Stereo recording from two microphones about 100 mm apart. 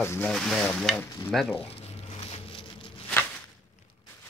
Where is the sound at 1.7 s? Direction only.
90° left.